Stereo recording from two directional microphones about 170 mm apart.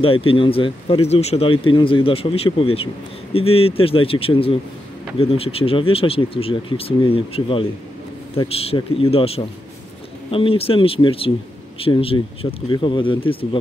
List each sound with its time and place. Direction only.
0.0 s speech: 30° left (ahead or behind)